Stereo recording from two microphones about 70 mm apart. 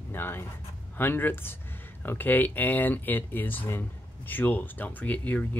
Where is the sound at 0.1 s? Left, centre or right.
Left.